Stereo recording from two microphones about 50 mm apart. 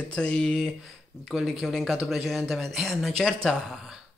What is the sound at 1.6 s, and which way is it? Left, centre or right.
Speech, centre.